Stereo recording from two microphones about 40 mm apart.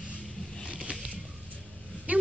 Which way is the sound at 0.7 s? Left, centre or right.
Right.